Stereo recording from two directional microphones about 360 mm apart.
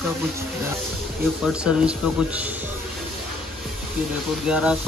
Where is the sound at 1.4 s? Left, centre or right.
Centre.